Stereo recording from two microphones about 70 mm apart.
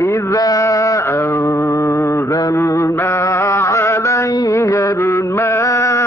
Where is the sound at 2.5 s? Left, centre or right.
Left.